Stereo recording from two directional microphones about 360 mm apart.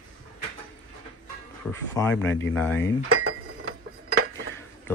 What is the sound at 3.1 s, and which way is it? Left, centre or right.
Dishes, right.